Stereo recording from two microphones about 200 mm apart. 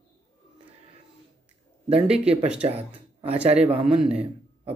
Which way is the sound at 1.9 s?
30° right (ahead or behind).